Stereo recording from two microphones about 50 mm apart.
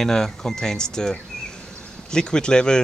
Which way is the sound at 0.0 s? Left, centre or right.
Centre.